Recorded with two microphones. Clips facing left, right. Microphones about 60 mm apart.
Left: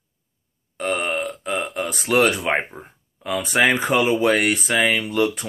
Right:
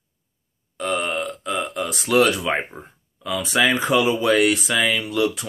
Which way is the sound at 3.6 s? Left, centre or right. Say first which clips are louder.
Even; left.